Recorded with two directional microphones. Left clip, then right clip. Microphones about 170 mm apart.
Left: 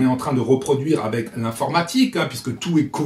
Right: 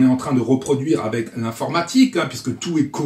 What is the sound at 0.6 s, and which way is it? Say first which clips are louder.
Speech: even; 15° left (ahead or behind).